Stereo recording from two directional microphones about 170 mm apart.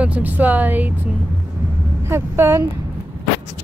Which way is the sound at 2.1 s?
15° right (ahead or behind).